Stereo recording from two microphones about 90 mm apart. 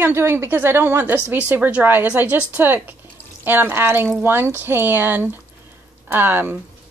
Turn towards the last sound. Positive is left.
turn(degrees=-25)  # may be behind; listen again after turning